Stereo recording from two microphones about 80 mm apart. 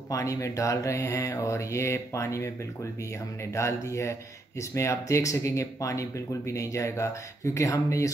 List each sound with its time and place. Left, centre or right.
0.1 s speech: left